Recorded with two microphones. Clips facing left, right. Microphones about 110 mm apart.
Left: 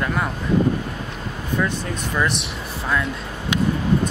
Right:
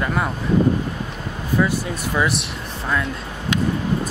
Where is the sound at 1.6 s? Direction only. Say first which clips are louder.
Right 4 dB; 5° right (ahead or behind).